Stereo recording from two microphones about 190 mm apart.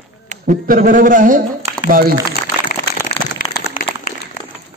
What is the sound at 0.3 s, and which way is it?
Speech, 45° right (ahead or behind).